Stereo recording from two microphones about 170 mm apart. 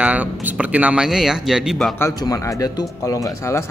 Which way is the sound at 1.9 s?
20° left (ahead or behind).